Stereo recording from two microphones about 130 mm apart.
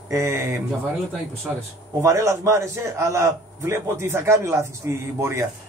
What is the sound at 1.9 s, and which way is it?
A man's voice, 25° right (ahead or behind).